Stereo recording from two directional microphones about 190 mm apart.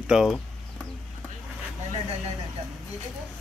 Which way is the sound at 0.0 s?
5° right (ahead or behind).